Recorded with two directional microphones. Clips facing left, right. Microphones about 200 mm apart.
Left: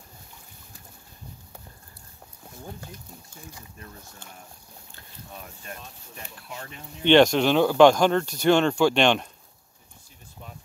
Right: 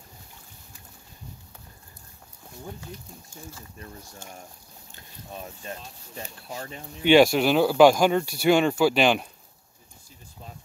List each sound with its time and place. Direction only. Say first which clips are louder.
5.4 s speech: right 4 dB; 30° right (ahead or behind)
7.0 s speech: even; 10° right (ahead or behind)